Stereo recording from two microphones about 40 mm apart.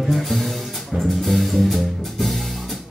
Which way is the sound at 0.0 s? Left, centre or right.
Centre.